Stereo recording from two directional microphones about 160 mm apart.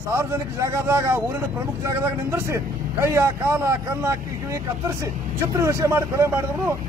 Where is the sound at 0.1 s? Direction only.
15° right (ahead or behind).